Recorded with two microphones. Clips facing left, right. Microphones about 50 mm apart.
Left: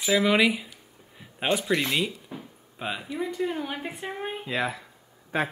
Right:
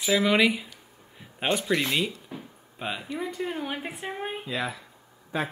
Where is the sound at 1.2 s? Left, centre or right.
Centre.